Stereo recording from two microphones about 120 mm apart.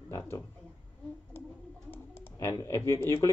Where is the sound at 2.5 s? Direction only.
25° left (ahead or behind).